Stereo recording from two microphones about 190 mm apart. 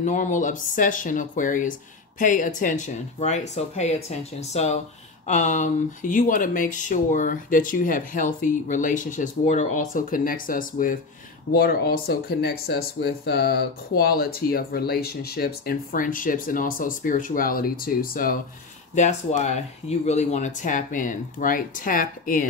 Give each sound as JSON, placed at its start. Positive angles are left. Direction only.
{"t": 0.0, "sound": "speech", "side_deg": 40}
{"t": 18.9, "sound": "speech", "side_deg": 40}